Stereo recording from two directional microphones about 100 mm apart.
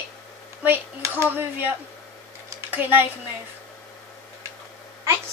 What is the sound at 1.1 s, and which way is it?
Speech, 20° right (ahead or behind).